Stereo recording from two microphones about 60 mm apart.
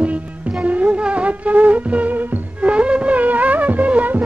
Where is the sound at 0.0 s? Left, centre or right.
Right.